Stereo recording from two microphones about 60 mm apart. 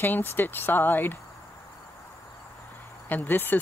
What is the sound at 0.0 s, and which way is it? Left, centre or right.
Speech, left.